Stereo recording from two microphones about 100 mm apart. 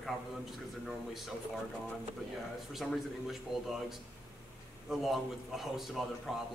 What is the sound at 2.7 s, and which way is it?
A man's voice, centre (ahead or behind).